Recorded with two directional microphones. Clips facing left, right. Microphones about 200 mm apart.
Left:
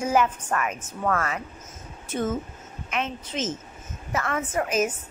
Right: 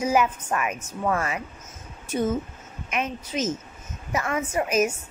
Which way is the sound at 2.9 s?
10° right (ahead or behind).